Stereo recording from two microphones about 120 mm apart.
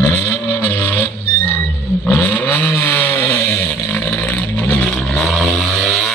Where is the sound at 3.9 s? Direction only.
15° left (ahead or behind).